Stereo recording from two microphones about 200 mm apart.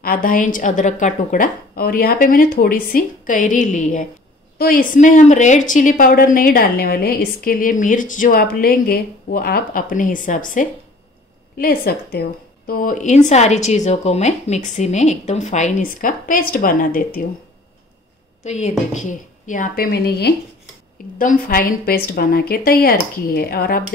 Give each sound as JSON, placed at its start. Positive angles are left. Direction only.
{"t": 0.0, "sound": "a woman's voice", "side_deg": 45}
{"t": 18.4, "sound": "a woman's voice", "side_deg": 35}